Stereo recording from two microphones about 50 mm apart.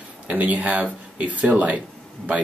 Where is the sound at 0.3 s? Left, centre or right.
Right.